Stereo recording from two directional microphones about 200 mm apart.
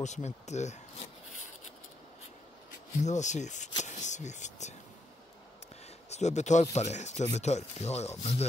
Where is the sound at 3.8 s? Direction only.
35° left (ahead or behind).